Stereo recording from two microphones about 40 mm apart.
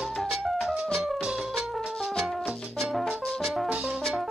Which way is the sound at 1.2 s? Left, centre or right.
Right.